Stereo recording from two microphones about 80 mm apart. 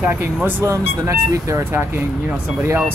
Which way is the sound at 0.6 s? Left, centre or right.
Right.